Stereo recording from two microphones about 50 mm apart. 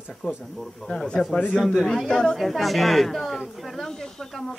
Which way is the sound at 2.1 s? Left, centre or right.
Centre.